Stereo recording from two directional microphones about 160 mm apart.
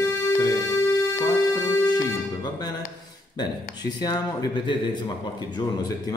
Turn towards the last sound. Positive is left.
turn(degrees=30)  # may be behind; listen again after turning